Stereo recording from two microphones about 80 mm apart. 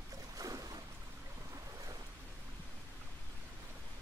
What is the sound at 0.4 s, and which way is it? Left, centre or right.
Boat, right.